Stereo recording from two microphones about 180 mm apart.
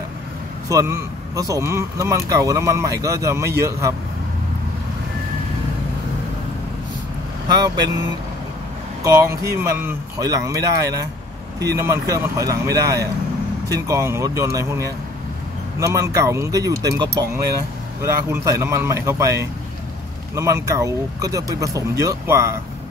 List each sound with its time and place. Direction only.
0.7 s speech: 15° right (ahead or behind)
7.4 s speech: 20° right (ahead or behind)
9.0 s speech: 15° right (ahead or behind)